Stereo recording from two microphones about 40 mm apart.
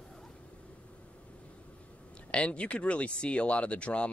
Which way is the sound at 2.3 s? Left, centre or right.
Left.